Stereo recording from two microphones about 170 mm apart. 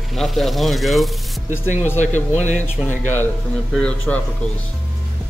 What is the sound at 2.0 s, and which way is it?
Speech, 45° left (ahead or behind).